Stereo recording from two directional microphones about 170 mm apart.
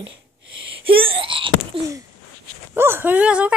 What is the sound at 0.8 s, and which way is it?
Wail, 30° right (ahead or behind).